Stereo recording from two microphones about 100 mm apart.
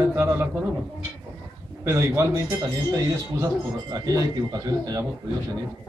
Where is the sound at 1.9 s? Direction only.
25° right (ahead or behind).